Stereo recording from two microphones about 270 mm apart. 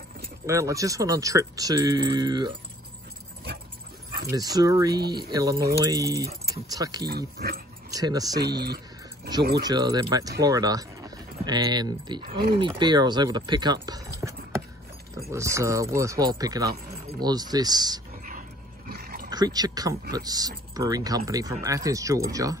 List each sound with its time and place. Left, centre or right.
0.5 s speech: centre
4.3 s speech: centre
7.1 s speech: right
7.9 s speech: centre
8.5 s a sound: right
9.6 s speech: centre
18.9 s a sound: right
19.3 s speech: centre